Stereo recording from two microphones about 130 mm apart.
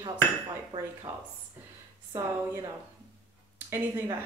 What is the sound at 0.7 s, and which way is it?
Speech, 40° right (ahead or behind).